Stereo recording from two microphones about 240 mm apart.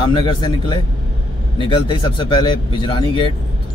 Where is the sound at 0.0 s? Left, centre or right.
Centre.